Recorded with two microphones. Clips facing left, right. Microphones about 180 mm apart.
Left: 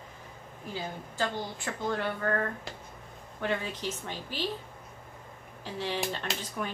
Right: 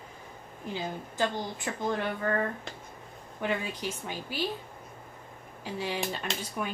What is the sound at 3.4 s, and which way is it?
A woman's voice, 15° right (ahead or behind).